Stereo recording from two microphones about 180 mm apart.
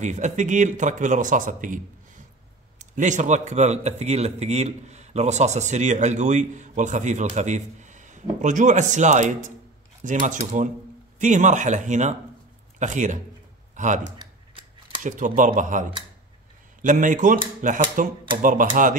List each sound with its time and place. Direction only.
0.0 s a man's voice: 40° right (ahead or behind)
2.8 s a man's voice: 40° right (ahead or behind)